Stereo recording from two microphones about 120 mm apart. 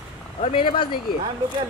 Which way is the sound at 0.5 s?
40° left (ahead or behind).